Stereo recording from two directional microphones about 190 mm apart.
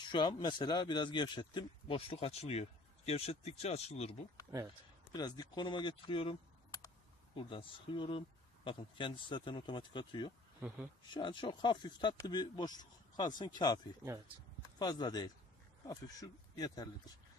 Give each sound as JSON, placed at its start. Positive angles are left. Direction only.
{"t": 0.1, "sound": "speech", "side_deg": 20}
{"t": 5.1, "sound": "speech", "side_deg": 20}
{"t": 7.3, "sound": "speech", "side_deg": 25}